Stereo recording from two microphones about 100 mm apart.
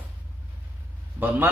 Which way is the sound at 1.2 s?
20° right (ahead or behind).